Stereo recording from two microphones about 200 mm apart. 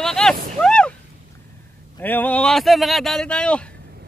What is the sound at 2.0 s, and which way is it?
Speech, 10° left (ahead or behind).